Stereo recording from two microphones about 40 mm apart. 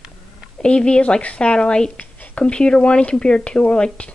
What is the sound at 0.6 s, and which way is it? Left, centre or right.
Speech, left.